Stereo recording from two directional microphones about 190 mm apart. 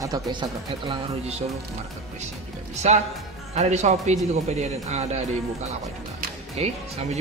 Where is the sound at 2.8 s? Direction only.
35° right (ahead or behind).